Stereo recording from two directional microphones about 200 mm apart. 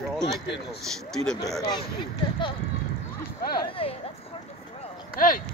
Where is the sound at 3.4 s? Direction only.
50° left (ahead or behind).